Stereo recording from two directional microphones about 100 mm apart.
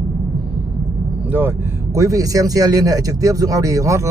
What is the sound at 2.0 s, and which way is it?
Speech, 35° right (ahead or behind).